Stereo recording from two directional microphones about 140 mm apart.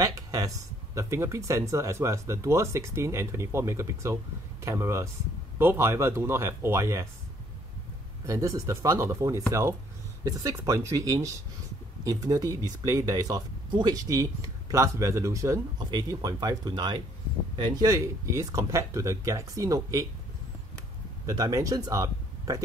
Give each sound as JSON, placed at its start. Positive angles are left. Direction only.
{"t": 0.0, "sound": "speech", "side_deg": -25}
{"t": 8.3, "sound": "speech", "side_deg": -25}
{"t": 21.3, "sound": "speech", "side_deg": -25}